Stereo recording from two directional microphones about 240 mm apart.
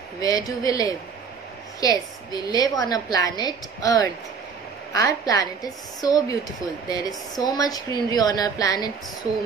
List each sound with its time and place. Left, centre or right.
0.2 s a woman's voice: centre